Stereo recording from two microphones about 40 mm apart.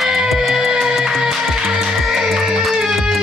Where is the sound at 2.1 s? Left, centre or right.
Centre.